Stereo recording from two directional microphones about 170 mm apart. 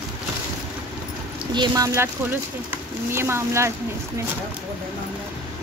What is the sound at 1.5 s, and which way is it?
Speech, 25° right (ahead or behind).